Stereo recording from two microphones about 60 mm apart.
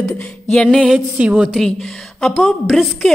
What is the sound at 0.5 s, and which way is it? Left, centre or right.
Speech, centre.